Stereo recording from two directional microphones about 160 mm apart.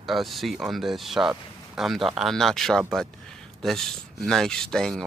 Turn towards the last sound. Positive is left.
turn(degrees=5)  # may be behind; listen again after turning